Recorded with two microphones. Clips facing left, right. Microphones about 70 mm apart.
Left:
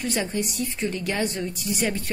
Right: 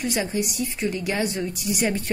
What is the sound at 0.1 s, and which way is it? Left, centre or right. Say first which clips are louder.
A woman's voice: right 1 dB; centre.